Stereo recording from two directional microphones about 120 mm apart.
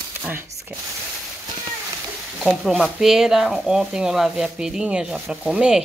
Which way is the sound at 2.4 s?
Centre (ahead or behind).